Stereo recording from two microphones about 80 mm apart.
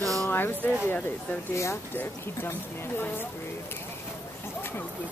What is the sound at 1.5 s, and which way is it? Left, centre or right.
Speech, left.